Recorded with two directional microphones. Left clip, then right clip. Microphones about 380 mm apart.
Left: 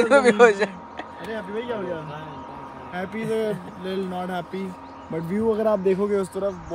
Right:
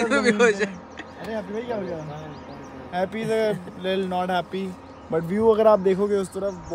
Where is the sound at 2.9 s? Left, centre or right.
Centre.